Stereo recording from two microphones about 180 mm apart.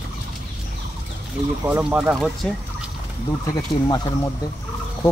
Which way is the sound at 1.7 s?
10° right (ahead or behind).